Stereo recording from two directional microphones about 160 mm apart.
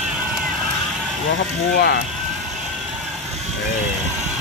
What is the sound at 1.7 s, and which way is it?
Speech, 75° left (ahead or behind).